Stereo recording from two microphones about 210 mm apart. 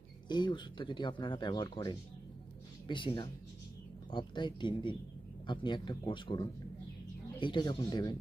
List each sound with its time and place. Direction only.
0.3 s speech: 20° left (ahead or behind)